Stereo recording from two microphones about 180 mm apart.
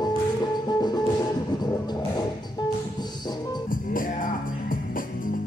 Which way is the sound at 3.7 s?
50° left (ahead or behind).